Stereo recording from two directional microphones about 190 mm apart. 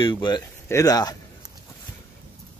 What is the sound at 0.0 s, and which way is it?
Speech, 25° left (ahead or behind).